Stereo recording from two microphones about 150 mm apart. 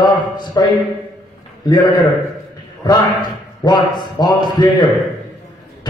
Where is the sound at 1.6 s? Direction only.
30° left (ahead or behind).